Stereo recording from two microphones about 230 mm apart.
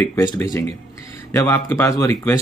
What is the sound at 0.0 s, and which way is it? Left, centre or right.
Speech, centre.